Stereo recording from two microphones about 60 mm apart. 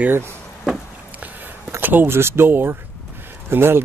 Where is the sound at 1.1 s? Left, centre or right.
Right.